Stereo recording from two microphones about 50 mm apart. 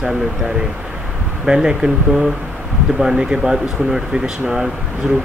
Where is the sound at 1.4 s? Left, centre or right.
Centre.